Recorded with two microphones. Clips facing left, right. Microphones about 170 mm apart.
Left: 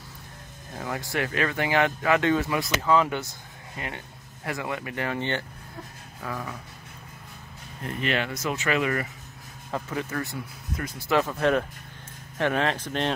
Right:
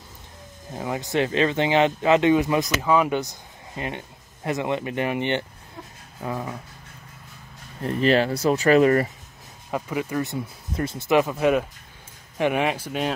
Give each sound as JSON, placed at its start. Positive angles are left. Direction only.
{"t": 0.7, "sound": "speech", "side_deg": -20}
{"t": 7.8, "sound": "speech", "side_deg": -35}
{"t": 9.7, "sound": "speech", "side_deg": -15}